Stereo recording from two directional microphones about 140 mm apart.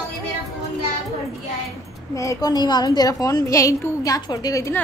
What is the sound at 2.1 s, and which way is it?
A woman's voice, 25° left (ahead or behind).